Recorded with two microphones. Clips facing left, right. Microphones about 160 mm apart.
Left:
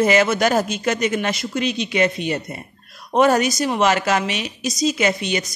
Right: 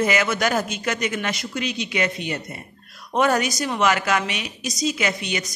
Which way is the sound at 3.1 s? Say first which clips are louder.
Left 4 dB; 25° left (ahead or behind).